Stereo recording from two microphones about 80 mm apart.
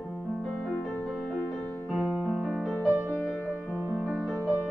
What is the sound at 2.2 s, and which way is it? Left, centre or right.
Music, centre.